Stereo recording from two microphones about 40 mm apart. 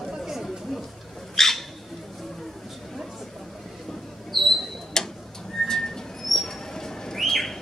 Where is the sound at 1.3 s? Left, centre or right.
Centre.